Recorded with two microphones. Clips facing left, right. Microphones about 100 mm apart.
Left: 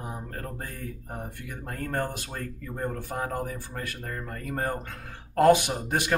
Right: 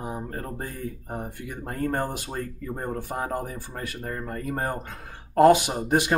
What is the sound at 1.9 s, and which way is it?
Speech, 20° right (ahead or behind).